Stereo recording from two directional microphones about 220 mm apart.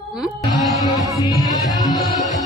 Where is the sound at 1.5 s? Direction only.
15° left (ahead or behind).